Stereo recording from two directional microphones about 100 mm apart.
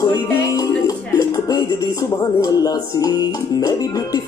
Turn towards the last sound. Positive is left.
turn(degrees=40)  # may be behind; listen again after turning